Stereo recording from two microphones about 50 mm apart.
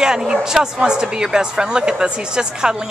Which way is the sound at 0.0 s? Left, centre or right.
Centre.